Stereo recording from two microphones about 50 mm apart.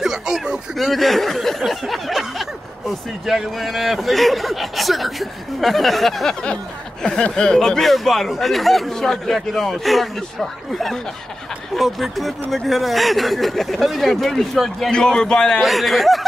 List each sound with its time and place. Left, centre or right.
0.0 s a sound: centre
0.7 s speech: centre
6.4 s speech: centre
14.9 s a man's voice: centre
15.6 s speech: centre